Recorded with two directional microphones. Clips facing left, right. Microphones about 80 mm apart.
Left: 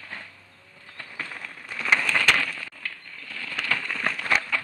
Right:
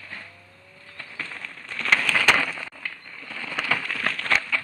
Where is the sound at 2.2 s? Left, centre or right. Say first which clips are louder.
Right 2 dB; centre.